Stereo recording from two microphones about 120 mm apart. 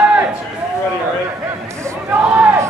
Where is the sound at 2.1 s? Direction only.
15° right (ahead or behind).